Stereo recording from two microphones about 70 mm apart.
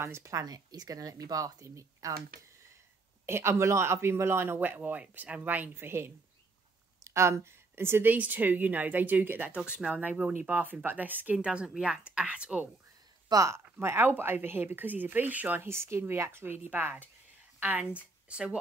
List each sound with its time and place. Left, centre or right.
0.0 s speech: right
3.3 s a woman's voice: right
9.6 s a woman's voice: centre
9.9 s a woman's voice: right
11.3 s a woman's voice: centre
13.3 s speech: right
13.7 s a woman's voice: right; by 18.6 s centre